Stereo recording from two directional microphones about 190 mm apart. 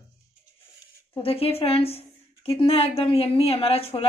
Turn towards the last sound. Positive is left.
turn(degrees=30)  # may be behind; listen again after turning